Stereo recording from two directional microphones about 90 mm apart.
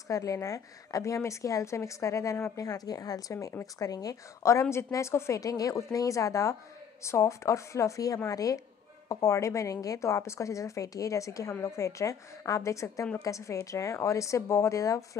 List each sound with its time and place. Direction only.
0.1 s speech: 40° left (ahead or behind)